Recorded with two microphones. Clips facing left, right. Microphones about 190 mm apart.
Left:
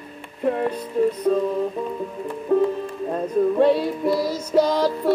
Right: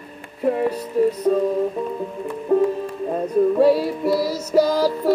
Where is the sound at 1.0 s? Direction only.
5° right (ahead or behind).